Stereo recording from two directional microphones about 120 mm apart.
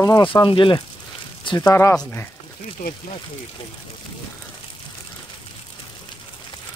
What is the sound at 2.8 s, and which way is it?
Speech, 90° left.